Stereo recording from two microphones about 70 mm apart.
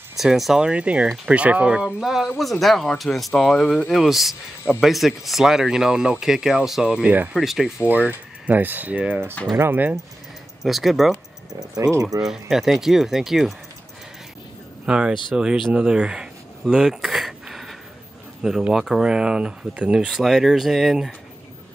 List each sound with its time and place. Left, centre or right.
0.2 s speech: centre
1.0 s speech: centre
1.3 s speech: centre
2.0 s speech: centre
3.9 s speech: centre
4.9 s speech: centre
8.5 s speech: right
10.6 s speech: centre
11.8 s speech: right
12.2 s speech: centre
14.9 s speech: centre